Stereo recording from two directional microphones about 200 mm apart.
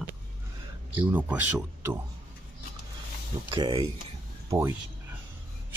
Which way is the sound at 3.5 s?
25° right (ahead or behind).